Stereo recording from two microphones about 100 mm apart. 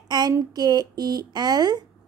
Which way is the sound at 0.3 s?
40° right (ahead or behind).